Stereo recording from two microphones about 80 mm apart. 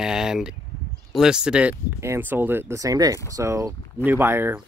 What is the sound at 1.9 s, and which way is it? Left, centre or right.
Speech, right.